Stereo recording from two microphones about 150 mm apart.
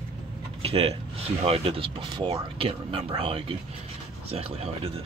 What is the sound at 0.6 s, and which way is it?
Speech, 40° right (ahead or behind).